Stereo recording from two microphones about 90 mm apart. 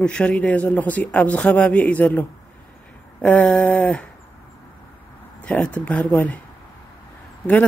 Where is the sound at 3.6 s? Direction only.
15° left (ahead or behind).